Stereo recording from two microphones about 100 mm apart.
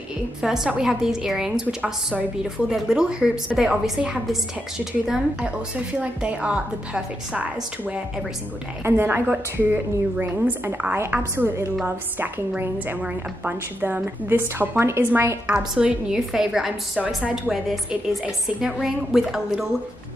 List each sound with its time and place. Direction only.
0.4 s a woman's voice: 5° right (ahead or behind); by 15.3 s 25° right (ahead or behind)
15.4 s a woman's voice: 10° right (ahead or behind)